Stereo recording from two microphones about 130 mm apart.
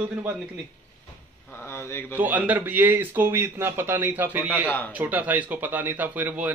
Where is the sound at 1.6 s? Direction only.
20° left (ahead or behind).